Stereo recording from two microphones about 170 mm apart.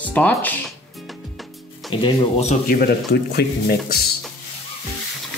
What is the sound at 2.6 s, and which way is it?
Speech, 60° left (ahead or behind).